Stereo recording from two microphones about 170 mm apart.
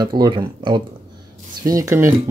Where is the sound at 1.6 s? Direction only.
20° right (ahead or behind).